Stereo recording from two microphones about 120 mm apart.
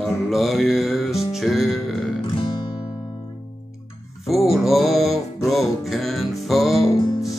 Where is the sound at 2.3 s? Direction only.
40° left (ahead or behind).